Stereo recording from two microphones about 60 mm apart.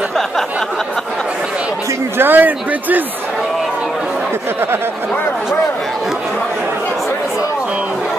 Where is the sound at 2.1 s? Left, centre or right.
Right.